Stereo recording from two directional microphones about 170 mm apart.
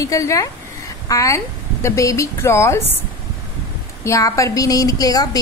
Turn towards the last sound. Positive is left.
turn(degrees=20)  # may be behind; listen again after turning